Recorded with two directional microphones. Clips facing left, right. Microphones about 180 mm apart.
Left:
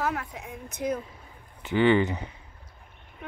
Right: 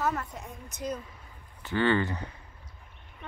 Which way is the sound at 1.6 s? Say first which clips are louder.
Left 5 dB; 15° left (ahead or behind).